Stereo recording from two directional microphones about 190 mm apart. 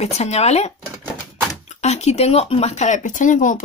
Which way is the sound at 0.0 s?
35° left (ahead or behind).